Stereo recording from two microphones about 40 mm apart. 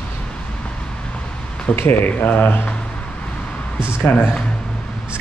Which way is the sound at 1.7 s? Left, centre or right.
Left.